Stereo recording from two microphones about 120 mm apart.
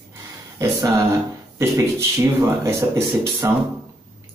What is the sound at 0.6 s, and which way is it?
Speech, 25° right (ahead or behind).